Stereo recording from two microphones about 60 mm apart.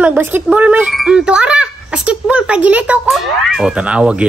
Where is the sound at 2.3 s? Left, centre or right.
Right.